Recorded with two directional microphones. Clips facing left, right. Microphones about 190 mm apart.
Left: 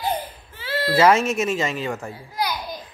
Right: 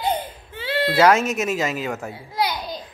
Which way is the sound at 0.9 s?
Centre (ahead or behind).